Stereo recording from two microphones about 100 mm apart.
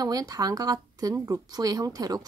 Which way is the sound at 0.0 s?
35° right (ahead or behind).